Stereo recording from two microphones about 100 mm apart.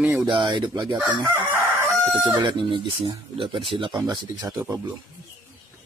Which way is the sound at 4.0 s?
40° right (ahead or behind).